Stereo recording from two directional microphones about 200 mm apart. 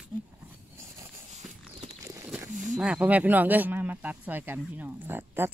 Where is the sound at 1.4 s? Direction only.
Centre (ahead or behind).